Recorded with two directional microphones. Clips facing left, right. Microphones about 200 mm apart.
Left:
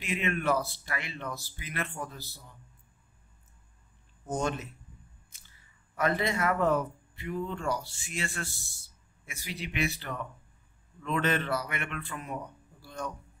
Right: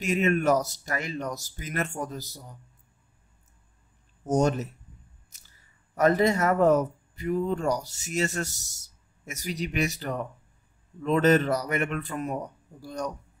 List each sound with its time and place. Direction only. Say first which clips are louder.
0.0 s speech: right 7 dB; 45° right (ahead or behind)
4.2 s speech: right 8 dB; 40° right (ahead or behind)
5.9 s speech: right 7 dB; 40° right (ahead or behind)